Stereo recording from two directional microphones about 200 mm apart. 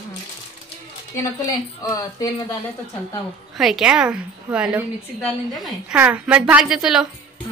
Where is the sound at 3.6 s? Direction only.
5° right (ahead or behind).